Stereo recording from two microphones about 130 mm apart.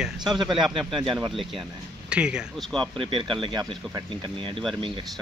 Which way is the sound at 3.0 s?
40° right (ahead or behind).